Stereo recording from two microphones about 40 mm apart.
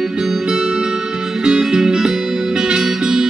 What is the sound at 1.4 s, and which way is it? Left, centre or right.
Music, centre.